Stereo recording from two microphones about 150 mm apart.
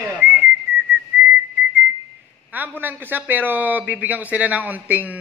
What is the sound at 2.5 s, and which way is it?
Speech, 10° right (ahead or behind).